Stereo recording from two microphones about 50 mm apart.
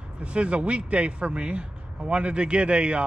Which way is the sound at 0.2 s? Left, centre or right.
Right.